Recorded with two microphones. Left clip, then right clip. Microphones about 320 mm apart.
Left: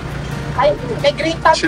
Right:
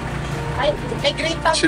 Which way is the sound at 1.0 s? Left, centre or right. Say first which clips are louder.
Left 7 dB; left.